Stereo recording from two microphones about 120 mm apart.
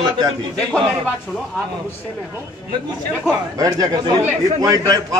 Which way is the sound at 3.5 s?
30° right (ahead or behind).